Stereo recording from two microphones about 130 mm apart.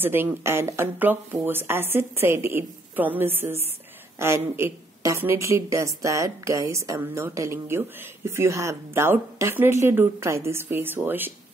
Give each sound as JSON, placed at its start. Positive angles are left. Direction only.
{"t": 0.0, "sound": "a woman's voice", "side_deg": -15}